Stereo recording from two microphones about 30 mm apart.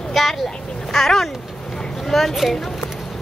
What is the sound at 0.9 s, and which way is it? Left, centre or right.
Speech, centre.